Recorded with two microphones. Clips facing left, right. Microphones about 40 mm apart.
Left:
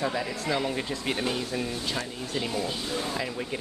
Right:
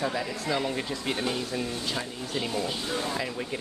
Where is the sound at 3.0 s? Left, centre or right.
Centre.